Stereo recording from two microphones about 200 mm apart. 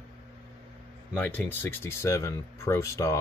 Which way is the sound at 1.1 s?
10° left (ahead or behind).